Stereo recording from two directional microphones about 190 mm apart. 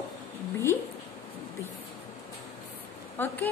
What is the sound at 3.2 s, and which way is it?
Speech, 10° left (ahead or behind).